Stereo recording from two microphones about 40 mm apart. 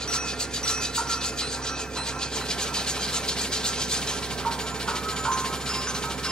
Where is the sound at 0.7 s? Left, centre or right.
Centre.